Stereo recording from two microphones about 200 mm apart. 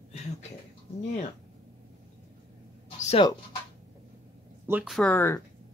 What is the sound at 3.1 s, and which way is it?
Speech, 25° left (ahead or behind).